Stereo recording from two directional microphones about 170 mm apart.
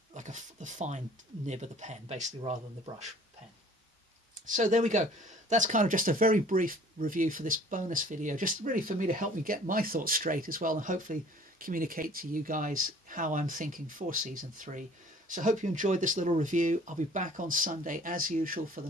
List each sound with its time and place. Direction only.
0.1 s speech: 45° right (ahead or behind)
4.5 s speech: 50° right (ahead or behind)